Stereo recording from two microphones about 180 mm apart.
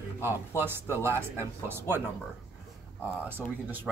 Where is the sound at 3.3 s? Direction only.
10° right (ahead or behind).